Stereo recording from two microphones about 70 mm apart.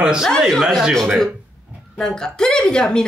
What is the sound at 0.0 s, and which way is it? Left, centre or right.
Speech, centre.